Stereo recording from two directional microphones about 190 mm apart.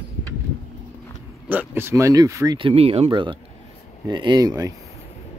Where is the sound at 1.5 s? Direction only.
10° right (ahead or behind).